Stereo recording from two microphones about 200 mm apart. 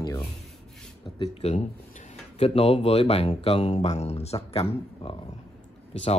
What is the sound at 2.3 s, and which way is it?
Speech, 30° left (ahead or behind).